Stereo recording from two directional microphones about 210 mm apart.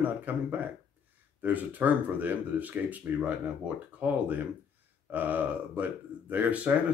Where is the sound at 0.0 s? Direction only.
10° right (ahead or behind).